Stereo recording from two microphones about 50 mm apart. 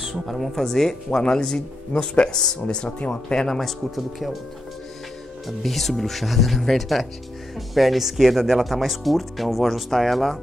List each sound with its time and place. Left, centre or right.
0.0 s speech: centre; by 3.3 s left
3.3 s speech: centre
5.6 s speech: centre